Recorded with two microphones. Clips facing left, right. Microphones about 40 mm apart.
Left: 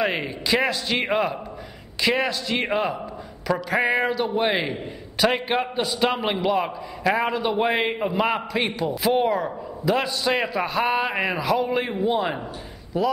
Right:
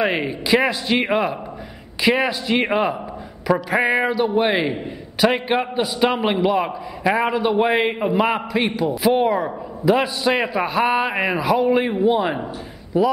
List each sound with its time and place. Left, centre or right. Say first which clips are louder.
0.0 s a man's voice: right 4 dB; centre